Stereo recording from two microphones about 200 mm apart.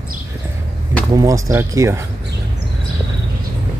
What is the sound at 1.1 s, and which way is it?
Speech, 15° right (ahead or behind).